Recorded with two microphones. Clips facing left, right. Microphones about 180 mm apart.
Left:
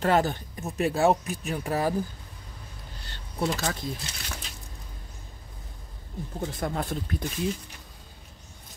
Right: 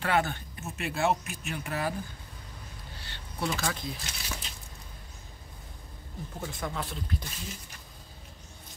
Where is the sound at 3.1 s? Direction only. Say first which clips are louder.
Left 4 dB; 40° left (ahead or behind).